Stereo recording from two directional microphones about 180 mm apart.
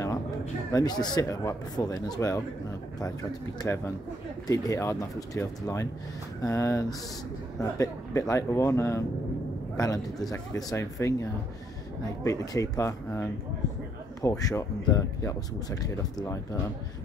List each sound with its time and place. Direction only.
0.7 s speech: 25° left (ahead or behind)